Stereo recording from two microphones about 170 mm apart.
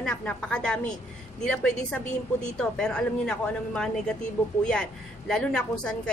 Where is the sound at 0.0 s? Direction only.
5° left (ahead or behind).